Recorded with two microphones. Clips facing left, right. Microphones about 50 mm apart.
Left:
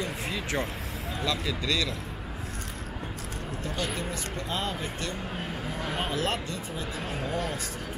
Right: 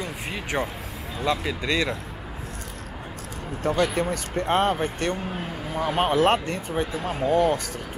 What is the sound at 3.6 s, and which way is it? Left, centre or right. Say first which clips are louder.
Speech: right 11 dB; right.